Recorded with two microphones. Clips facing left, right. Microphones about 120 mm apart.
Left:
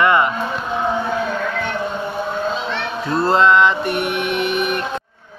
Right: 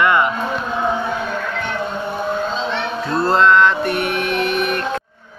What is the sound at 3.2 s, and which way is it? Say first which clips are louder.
Mantra: even; 5° left (ahead or behind).